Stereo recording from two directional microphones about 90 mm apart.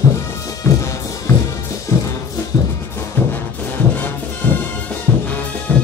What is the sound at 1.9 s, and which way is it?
Music, 30° left (ahead or behind).